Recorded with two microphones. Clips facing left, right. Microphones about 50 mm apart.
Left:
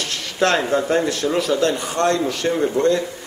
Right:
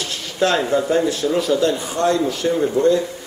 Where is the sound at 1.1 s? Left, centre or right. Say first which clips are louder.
Right 1 dB; left.